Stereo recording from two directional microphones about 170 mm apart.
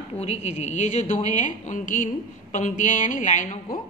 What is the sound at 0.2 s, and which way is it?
A woman's voice, 40° left (ahead or behind).